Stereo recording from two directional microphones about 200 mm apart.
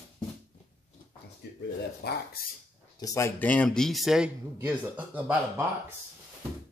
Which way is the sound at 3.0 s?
15° left (ahead or behind).